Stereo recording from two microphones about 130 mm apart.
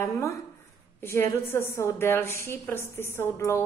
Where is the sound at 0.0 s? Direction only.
25° left (ahead or behind).